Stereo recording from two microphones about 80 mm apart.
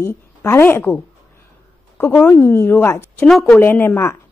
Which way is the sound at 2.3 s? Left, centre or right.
Left.